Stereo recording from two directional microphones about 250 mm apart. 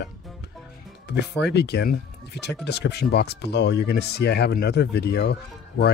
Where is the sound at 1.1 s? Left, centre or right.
Left.